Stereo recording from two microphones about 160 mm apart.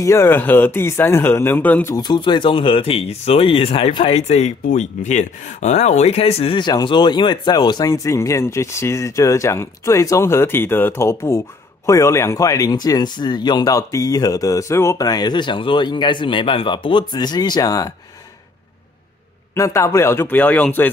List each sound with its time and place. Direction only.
0.0 s speech: 15° left (ahead or behind)
2.0 s speech: 30° left (ahead or behind)
19.5 s speech: 20° left (ahead or behind)